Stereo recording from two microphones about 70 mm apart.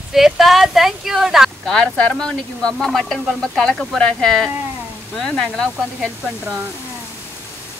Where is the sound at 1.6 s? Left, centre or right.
Centre.